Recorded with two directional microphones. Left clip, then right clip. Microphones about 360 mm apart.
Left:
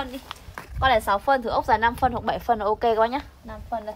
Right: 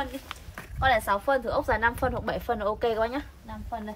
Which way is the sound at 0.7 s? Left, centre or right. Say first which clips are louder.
Left 3 dB; left.